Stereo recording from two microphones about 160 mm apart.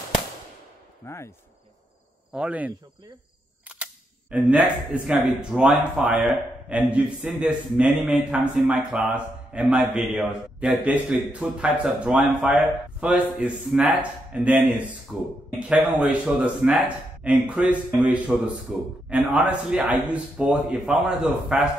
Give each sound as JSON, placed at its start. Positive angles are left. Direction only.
{"t": 1.0, "sound": "speech", "side_deg": 15}
{"t": 2.3, "sound": "a man's voice", "side_deg": -10}